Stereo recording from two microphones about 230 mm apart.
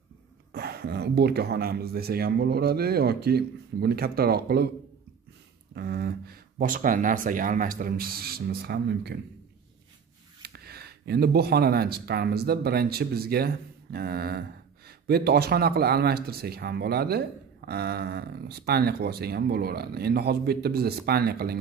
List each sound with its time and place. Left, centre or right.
0.5 s speech: right
5.8 s speech: right
10.4 s speech: right